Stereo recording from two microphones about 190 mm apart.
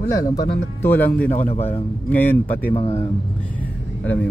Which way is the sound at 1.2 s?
45° left (ahead or behind).